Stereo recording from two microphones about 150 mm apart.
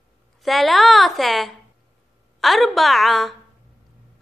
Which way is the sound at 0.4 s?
Centre (ahead or behind).